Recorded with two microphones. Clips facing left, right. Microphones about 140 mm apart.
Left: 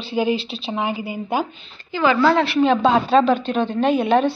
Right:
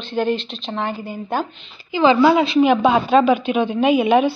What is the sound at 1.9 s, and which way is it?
A woman's voice, 20° right (ahead or behind).